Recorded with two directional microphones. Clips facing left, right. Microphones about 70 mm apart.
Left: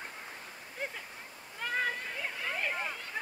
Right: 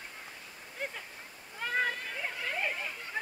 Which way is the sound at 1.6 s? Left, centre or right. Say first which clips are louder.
Right 1 dB; centre.